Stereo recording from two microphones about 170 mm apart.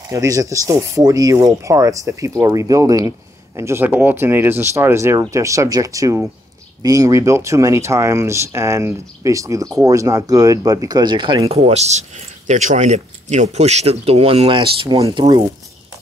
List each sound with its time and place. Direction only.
0.1 s speech: 20° right (ahead or behind)
11.5 s speech: 40° right (ahead or behind)